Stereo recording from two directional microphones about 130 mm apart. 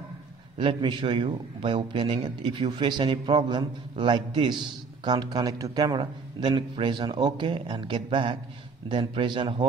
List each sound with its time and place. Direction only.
0.6 s a man's voice: 40° right (ahead or behind)